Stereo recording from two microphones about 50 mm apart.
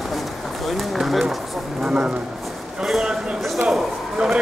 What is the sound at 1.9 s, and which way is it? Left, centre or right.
Speech, centre.